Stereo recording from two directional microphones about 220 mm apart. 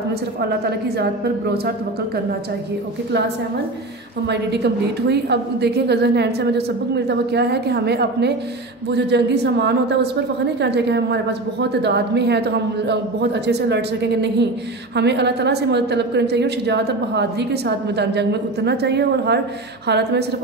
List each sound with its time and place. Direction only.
0.5 s a woman's voice: 45° right (ahead or behind)
4.3 s a woman's voice: 50° right (ahead or behind)